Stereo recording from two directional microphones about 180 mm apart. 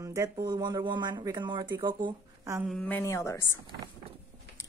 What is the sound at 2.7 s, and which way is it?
Speech, 10° left (ahead or behind).